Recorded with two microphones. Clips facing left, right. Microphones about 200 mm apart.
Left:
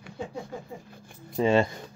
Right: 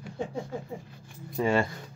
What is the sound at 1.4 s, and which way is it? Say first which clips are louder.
Speech: left 3 dB; 20° left (ahead or behind).